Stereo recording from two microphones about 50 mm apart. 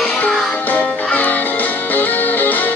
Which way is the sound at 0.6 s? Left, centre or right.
Left.